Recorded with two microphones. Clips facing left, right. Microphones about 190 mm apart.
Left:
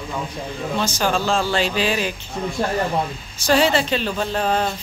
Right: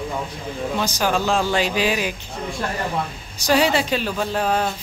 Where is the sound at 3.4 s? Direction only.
10° right (ahead or behind).